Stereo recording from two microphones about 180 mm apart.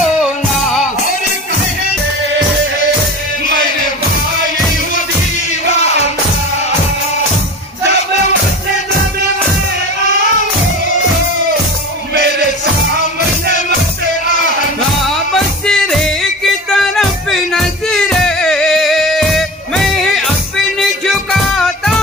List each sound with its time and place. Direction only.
0.0 s music: centre (ahead or behind)
5.7 s music: 35° left (ahead or behind)
15.0 s music: centre (ahead or behind)